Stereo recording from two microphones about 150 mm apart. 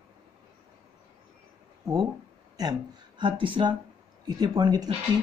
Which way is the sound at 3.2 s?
35° right (ahead or behind).